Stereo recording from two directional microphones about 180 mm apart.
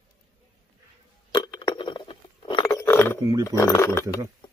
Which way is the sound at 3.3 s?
20° right (ahead or behind).